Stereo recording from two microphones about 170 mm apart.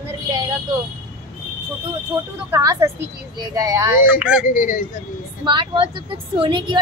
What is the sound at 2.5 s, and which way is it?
A woman's voice, 20° right (ahead or behind).